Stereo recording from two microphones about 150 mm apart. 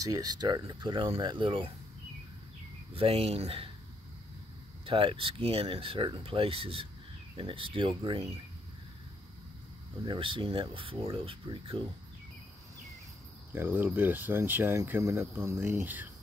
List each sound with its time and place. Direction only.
0.0 s speech: 25° right (ahead or behind)
2.9 s speech: 40° right (ahead or behind)
4.8 s speech: 35° right (ahead or behind)
10.0 s speech: 35° right (ahead or behind)
13.6 s speech: 15° right (ahead or behind)